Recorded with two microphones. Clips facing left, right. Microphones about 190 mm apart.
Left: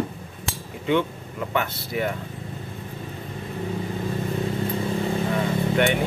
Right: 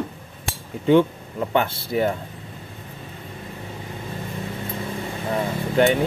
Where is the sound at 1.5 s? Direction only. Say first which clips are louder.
Right 5 dB; 30° right (ahead or behind).